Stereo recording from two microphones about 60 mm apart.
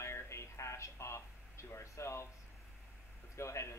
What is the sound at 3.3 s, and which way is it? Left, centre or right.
Speech, left.